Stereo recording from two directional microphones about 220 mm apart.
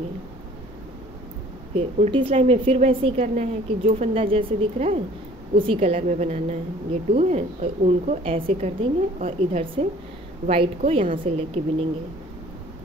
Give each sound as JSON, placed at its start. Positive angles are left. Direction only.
{"t": 1.8, "sound": "a woman's voice", "side_deg": -25}